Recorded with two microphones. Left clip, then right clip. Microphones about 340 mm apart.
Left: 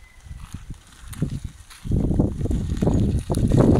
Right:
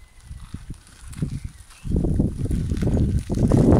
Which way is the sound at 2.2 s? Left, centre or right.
Left.